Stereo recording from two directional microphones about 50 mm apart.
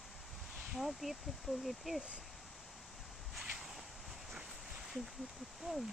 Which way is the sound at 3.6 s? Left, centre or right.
Centre.